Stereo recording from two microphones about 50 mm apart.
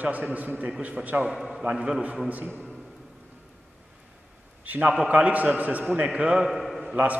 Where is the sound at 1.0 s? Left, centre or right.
Centre.